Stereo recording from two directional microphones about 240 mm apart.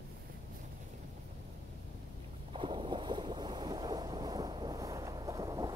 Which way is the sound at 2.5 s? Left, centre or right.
Right.